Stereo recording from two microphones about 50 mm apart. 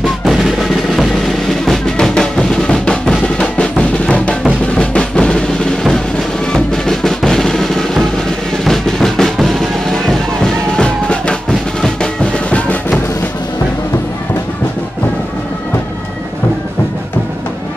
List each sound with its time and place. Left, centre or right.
0.0 s music: centre
2.0 s music: centre
3.3 s drum: left
4.7 s music: centre
5.9 s drum: centre
8.6 s music: centre
12.0 s music: centre